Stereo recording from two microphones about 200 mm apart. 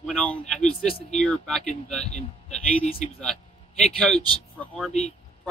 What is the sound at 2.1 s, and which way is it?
Speech, 35° left (ahead or behind).